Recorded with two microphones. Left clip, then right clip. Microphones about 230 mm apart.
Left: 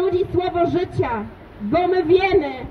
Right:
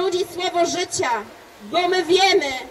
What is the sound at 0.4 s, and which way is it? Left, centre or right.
A man's voice, right.